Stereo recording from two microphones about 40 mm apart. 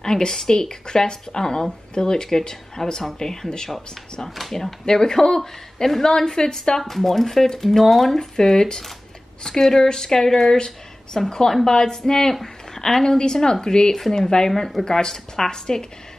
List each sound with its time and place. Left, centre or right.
0.0 s speech: centre
3.7 s a woman's voice: centre